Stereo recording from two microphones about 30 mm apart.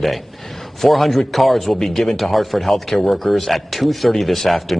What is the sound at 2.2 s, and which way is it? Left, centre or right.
Speech, centre.